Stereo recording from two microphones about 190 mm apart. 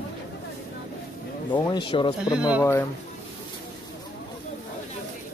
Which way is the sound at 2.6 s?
15° left (ahead or behind).